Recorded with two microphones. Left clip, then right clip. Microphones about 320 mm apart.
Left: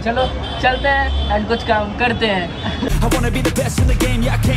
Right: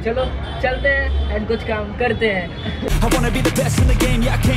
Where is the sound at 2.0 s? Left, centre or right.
Left.